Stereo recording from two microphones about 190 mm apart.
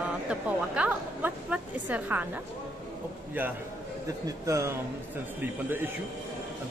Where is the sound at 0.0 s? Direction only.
5° right (ahead or behind).